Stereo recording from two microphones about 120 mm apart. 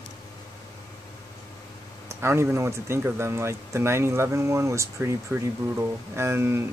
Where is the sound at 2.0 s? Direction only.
20° right (ahead or behind).